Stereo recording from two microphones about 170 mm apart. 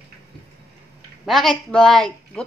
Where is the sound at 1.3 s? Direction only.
Centre (ahead or behind).